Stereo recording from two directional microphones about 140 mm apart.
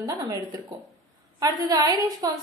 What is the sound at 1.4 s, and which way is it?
Speech, 25° right (ahead or behind).